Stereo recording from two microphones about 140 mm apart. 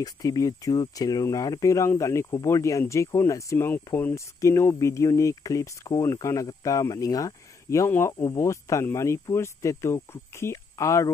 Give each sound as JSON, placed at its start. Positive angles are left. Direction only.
{"t": 0.0, "sound": "speech", "side_deg": 25}